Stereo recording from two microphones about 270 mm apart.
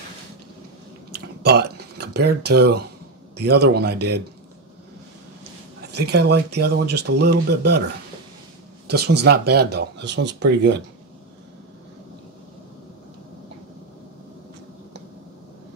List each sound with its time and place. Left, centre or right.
1.4 s a sound: right
3.3 s speech: right
5.9 s speech: right
8.8 s speech: right